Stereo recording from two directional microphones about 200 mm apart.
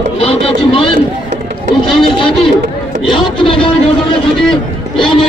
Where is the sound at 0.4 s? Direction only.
25° left (ahead or behind).